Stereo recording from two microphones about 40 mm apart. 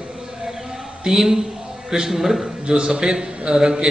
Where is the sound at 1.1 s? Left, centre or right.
Centre.